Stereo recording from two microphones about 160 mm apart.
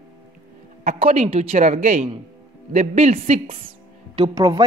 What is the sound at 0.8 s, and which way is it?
Speech, 40° right (ahead or behind).